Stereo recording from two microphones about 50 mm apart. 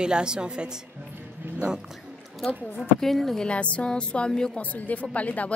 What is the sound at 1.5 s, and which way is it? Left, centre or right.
Music, centre.